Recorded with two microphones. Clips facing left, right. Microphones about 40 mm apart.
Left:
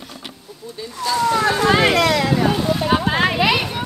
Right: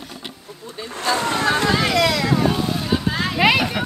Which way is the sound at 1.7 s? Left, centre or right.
Left.